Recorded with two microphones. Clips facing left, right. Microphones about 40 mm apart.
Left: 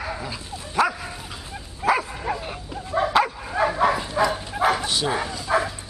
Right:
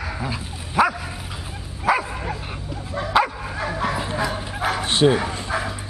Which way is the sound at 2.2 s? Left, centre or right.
Centre.